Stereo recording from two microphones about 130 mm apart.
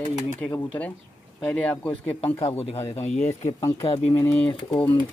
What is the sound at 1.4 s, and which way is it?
Speech, 10° left (ahead or behind).